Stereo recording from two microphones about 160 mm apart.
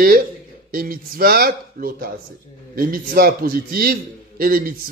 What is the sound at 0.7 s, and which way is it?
A man's voice, 65° right (ahead or behind).